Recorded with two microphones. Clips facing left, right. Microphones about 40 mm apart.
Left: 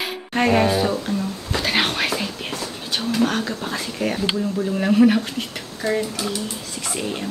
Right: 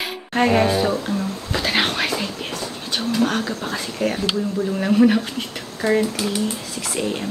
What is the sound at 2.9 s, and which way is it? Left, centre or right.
Speech, centre.